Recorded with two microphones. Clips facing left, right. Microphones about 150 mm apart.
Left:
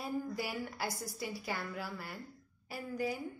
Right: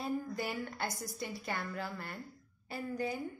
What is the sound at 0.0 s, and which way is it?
A woman's voice, 10° left (ahead or behind).